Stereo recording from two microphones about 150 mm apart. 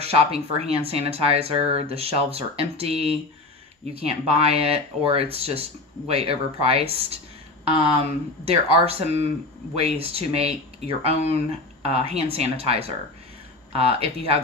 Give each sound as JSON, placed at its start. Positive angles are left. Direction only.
{"t": 0.0, "sound": "speech", "side_deg": -40}